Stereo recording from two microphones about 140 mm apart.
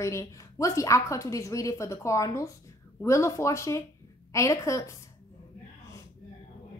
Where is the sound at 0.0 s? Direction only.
20° left (ahead or behind).